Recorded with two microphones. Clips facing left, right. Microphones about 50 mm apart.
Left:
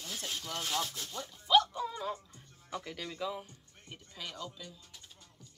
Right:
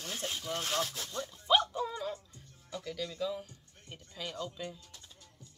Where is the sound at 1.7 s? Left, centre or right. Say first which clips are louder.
Right 1 dB; centre.